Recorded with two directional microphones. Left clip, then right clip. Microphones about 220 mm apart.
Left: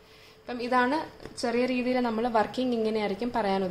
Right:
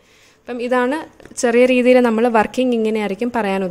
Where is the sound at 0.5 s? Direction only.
40° right (ahead or behind).